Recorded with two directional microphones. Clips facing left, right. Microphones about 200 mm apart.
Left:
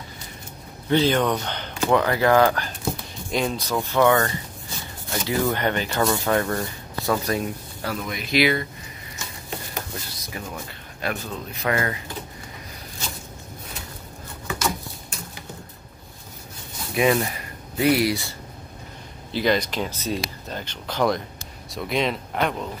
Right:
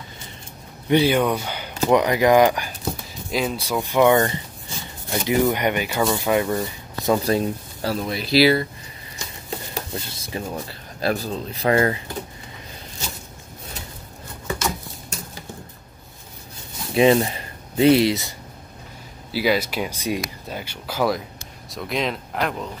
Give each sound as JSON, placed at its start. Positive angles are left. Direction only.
{"t": 0.8, "sound": "speech", "side_deg": -10}
{"t": 9.8, "sound": "speech", "side_deg": -25}
{"t": 16.9, "sound": "speech", "side_deg": -25}
{"t": 19.3, "sound": "speech", "side_deg": -5}